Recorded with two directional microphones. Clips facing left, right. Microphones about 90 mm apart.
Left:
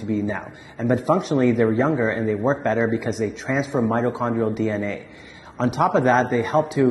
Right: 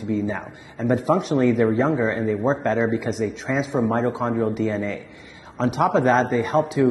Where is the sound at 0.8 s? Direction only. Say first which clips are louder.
Even; 25° left (ahead or behind).